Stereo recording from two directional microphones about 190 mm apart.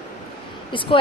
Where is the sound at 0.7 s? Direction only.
25° left (ahead or behind).